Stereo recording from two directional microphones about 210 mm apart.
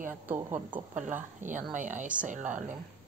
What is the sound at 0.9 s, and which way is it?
A woman's voice, 35° right (ahead or behind).